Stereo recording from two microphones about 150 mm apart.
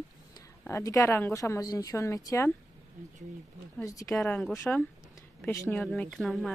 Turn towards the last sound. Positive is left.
turn(degrees=0)  # may be behind; listen again after turning